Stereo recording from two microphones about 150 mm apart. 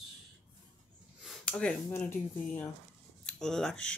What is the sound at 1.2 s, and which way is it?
Speech, 5° left (ahead or behind).